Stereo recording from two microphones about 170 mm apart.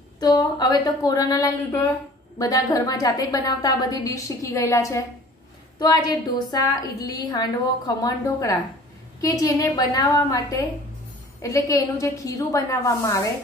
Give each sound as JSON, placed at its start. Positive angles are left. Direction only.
{"t": 0.2, "sound": "a woman's voice", "side_deg": 25}